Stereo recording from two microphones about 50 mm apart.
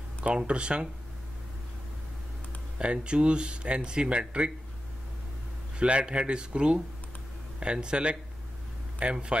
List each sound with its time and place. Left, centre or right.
0.2 s speech: right
2.8 s speech: right
5.8 s speech: right